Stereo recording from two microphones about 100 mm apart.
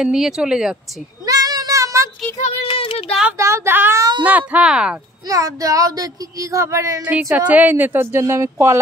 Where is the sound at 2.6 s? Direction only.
65° left (ahead or behind).